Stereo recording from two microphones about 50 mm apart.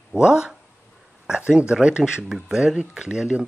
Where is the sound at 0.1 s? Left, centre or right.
Centre.